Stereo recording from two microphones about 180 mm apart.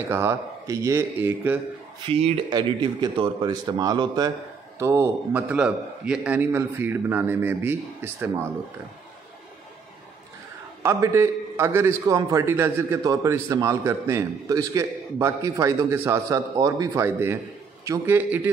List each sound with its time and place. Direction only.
0.1 s a man's voice: 15° right (ahead or behind)
2.0 s a man's voice: 30° right (ahead or behind); by 8.5 s 10° right (ahead or behind)
10.8 s a man's voice: 15° right (ahead or behind)